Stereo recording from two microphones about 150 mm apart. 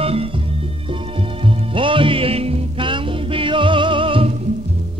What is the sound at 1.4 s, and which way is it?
Music, 35° right (ahead or behind).